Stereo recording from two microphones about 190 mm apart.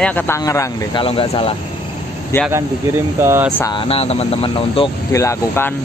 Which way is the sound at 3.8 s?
30° left (ahead or behind).